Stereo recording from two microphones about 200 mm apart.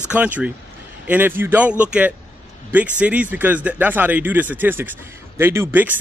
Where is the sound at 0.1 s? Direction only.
5° right (ahead or behind).